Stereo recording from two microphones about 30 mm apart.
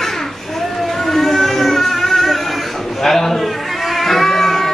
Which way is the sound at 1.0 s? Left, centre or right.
Centre.